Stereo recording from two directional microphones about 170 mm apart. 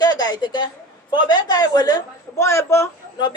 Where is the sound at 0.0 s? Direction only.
25° left (ahead or behind).